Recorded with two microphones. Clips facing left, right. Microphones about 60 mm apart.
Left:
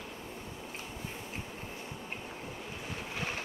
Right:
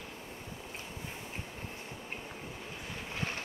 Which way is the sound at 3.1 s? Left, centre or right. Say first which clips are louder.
Even; centre.